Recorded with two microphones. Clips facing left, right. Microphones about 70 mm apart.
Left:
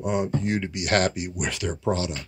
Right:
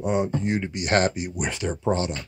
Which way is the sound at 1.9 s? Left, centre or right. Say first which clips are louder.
Right 2 dB; right.